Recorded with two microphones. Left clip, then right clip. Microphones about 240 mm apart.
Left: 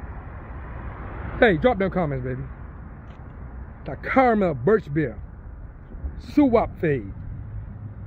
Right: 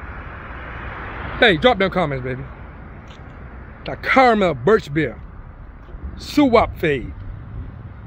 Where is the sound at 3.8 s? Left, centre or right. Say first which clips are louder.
Right 5 dB; centre.